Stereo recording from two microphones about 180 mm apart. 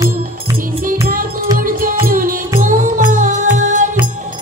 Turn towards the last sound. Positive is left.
turn(degrees=-45)  # may be behind; listen again after turning